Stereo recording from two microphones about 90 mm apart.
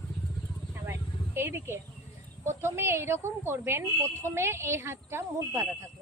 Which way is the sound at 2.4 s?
30° right (ahead or behind).